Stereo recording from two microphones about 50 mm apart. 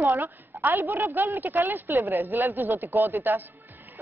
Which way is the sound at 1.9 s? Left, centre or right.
Right.